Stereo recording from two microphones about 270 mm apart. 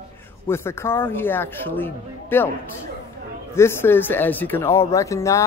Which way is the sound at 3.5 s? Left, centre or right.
Centre.